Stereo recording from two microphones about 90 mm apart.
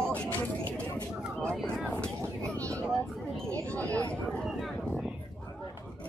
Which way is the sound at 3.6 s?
15° left (ahead or behind).